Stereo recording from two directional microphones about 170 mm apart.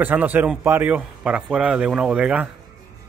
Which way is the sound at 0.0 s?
10° right (ahead or behind).